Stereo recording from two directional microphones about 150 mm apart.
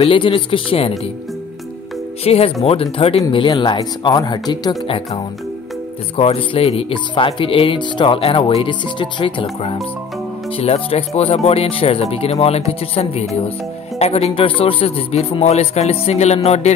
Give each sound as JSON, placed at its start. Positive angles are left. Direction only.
{"t": 0.0, "sound": "speech", "side_deg": 35}
{"t": 2.2, "sound": "speech", "side_deg": 40}